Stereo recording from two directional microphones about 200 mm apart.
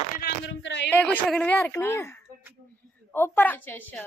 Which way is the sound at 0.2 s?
65° left (ahead or behind).